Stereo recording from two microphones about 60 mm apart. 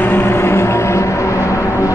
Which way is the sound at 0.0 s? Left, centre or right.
Left.